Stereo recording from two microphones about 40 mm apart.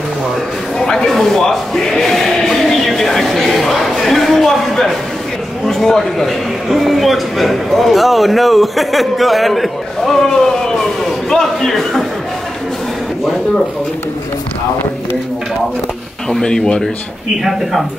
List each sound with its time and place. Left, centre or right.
0.7 s a sound: centre
5.7 s a man's voice: centre
16.3 s speech: centre
17.4 s a man's voice: centre